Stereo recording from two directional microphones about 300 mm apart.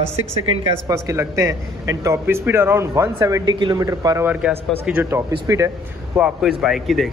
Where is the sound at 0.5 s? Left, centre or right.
Centre.